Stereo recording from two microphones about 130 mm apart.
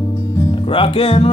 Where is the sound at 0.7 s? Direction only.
45° left (ahead or behind).